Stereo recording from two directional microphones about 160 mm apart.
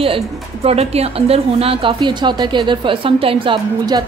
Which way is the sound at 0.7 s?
40° right (ahead or behind).